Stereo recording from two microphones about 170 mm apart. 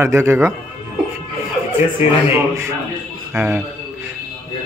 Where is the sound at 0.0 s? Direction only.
15° right (ahead or behind).